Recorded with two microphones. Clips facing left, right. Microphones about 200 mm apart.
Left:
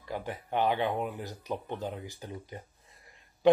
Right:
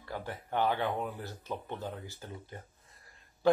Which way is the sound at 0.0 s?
15° left (ahead or behind).